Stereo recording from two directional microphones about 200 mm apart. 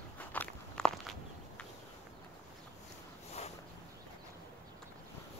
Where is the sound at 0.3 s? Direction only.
5° left (ahead or behind).